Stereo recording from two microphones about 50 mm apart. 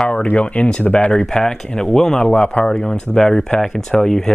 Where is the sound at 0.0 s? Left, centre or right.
Centre.